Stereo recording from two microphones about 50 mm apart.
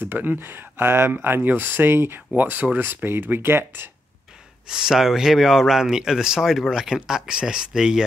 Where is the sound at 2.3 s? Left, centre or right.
Right.